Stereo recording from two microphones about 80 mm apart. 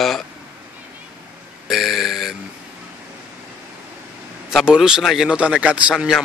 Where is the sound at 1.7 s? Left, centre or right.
Centre.